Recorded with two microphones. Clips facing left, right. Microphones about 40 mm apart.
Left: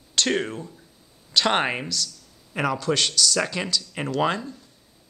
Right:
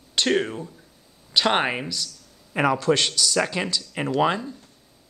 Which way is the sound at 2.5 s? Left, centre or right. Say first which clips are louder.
Right 3 dB; centre.